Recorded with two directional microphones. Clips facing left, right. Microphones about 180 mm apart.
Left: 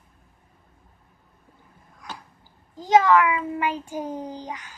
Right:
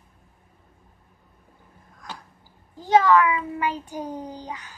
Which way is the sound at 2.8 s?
20° left (ahead or behind).